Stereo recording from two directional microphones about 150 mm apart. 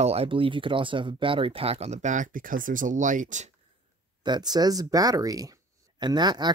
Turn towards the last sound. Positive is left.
turn(degrees=-30)  # may be behind; listen again after turning